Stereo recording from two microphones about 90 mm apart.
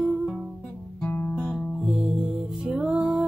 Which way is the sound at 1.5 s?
5° right (ahead or behind).